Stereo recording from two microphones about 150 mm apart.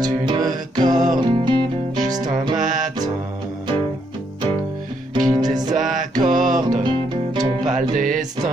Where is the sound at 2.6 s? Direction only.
60° right (ahead or behind).